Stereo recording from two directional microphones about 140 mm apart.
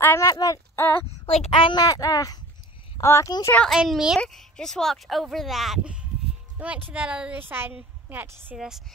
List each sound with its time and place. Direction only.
0.0 s a sound: 15° left (ahead or behind)
1.0 s a child's voice: 45° left (ahead or behind); by 3.5 s 25° left (ahead or behind)
3.5 s a woman's voice: centre (ahead or behind); by 8.5 s 15° right (ahead or behind)
8.5 s speech: 5° right (ahead or behind)